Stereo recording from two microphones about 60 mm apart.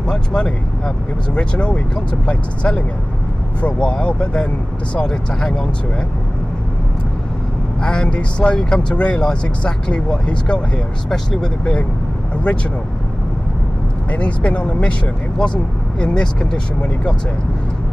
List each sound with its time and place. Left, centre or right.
0.1 s speech: centre
7.8 s speech: centre
14.1 s speech: centre